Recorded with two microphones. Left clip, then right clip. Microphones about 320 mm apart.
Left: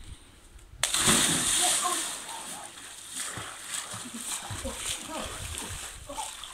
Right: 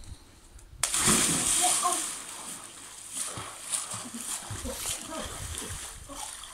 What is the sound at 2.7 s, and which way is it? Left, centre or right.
Splash, centre.